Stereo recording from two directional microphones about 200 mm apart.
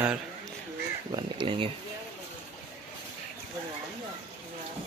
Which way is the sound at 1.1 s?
25° right (ahead or behind).